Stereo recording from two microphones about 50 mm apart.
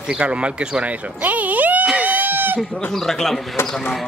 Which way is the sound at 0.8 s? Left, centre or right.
Right.